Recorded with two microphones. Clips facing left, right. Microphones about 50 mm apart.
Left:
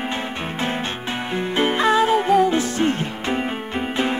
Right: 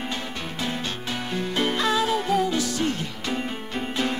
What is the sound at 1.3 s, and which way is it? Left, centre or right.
Music, left.